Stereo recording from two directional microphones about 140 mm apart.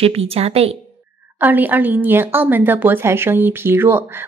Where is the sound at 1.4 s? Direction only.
15° right (ahead or behind).